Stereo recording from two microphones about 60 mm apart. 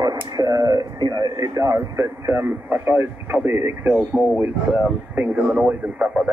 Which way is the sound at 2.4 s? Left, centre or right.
Right.